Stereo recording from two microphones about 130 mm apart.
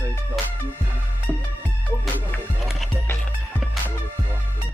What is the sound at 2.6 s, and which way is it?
Music, centre (ahead or behind).